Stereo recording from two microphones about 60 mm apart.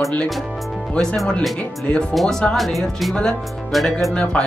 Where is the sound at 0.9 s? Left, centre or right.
Centre.